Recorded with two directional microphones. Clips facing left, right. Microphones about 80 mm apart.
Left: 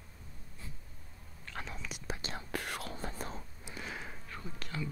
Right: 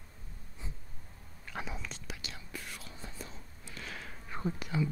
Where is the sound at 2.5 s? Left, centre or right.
Left.